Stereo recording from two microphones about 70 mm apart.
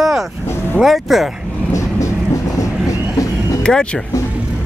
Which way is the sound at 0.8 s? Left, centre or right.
Centre.